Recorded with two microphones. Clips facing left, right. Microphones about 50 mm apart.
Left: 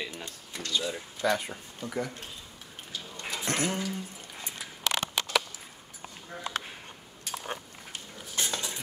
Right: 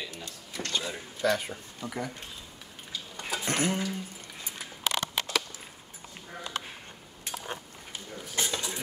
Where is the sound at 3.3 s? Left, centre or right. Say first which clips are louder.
Right 1 dB; centre.